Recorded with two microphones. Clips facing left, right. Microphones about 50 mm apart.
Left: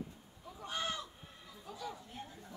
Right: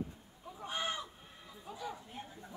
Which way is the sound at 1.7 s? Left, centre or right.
Centre.